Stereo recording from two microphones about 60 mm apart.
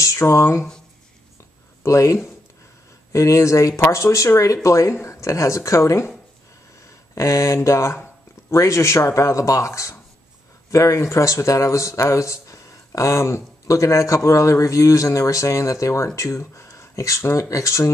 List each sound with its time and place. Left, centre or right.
0.0 s speech: left
1.8 s speech: left
7.2 s speech: left